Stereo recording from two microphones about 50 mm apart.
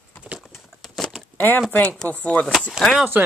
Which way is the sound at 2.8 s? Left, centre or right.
Centre.